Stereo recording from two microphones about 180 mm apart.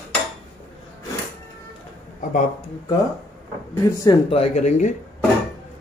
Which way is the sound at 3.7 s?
15° left (ahead or behind).